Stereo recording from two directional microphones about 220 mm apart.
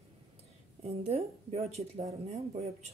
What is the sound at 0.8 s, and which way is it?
Speech, 30° right (ahead or behind).